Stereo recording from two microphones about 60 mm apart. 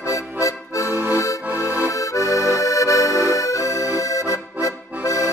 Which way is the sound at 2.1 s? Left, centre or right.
Left.